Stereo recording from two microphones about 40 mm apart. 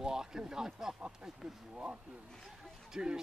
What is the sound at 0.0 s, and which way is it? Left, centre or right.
Speech, centre.